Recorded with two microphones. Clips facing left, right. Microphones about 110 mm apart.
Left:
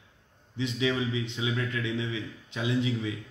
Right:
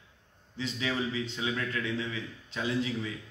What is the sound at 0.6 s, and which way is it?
A man's voice, 15° left (ahead or behind).